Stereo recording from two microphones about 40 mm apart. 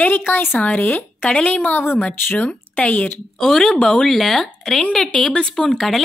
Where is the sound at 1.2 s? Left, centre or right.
Left.